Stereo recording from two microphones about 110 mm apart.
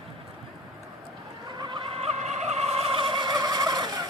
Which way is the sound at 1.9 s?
75° right (ahead or behind).